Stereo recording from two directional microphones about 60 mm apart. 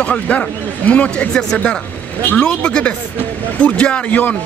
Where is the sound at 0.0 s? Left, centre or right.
Left.